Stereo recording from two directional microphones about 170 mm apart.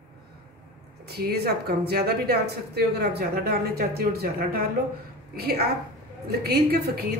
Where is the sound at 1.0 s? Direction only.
70° right (ahead or behind).